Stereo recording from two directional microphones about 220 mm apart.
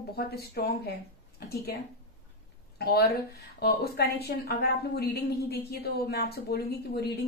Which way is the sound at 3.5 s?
45° left (ahead or behind).